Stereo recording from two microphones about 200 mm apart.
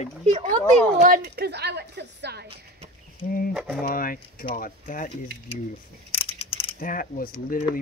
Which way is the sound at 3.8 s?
45° left (ahead or behind).